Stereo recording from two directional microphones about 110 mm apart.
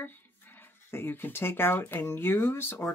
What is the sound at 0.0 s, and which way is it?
Speech, 20° left (ahead or behind).